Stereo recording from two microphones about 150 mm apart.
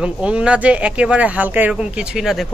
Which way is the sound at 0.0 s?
5° right (ahead or behind).